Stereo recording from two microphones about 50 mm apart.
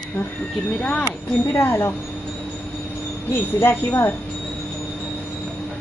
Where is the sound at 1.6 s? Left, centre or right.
Left.